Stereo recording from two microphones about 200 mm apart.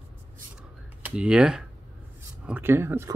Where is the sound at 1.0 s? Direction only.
5° right (ahead or behind).